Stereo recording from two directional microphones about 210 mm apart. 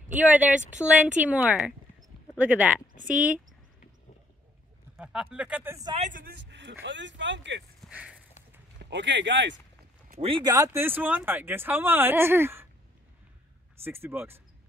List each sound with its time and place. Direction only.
0.1 s speech: 5° right (ahead or behind)
4.9 s speech: 5° right (ahead or behind)
5.9 s speech: 35° right (ahead or behind); by 7.6 s 60° right (ahead or behind)
7.8 s a sound: 5° right (ahead or behind)
8.9 s speech: 55° right (ahead or behind)
10.2 s speech: 20° right (ahead or behind)
13.8 s speech: 10° right (ahead or behind)